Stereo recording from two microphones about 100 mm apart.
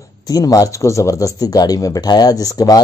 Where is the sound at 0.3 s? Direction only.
35° left (ahead or behind).